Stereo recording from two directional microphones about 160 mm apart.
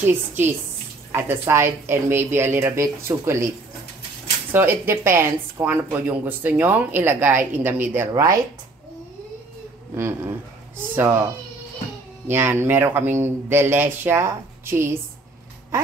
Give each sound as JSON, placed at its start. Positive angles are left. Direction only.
{"t": 0.0, "sound": "speech", "side_deg": -15}
{"t": 9.9, "sound": "speech", "side_deg": -15}
{"t": 12.3, "sound": "speech", "side_deg": -15}